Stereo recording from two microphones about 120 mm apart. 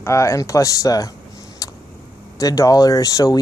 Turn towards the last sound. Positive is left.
turn(degrees=30)  # may be behind; listen again after turning